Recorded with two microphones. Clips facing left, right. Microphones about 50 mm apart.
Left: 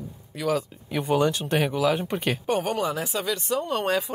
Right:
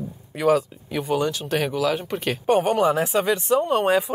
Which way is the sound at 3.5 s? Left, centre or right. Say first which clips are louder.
Right 6 dB; centre.